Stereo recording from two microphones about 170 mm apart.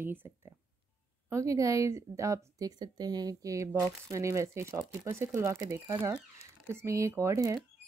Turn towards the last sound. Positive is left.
turn(degrees=-20)  # may be behind; listen again after turning